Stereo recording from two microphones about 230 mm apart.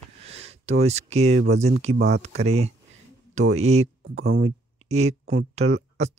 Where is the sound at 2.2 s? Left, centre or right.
Right.